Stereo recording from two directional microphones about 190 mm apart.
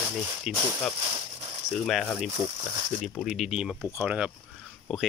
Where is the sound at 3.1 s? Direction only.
5° right (ahead or behind).